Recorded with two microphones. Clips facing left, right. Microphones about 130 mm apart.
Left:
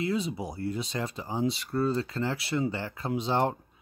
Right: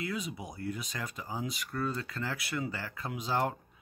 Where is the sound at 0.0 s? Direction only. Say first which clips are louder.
Left 7 dB; 30° left (ahead or behind).